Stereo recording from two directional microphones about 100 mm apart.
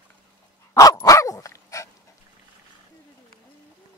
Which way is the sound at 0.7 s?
40° left (ahead or behind).